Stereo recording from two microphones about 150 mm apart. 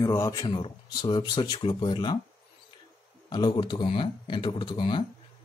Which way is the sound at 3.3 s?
30° left (ahead or behind).